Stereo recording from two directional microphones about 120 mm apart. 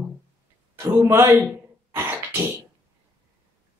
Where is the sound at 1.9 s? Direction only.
20° right (ahead or behind).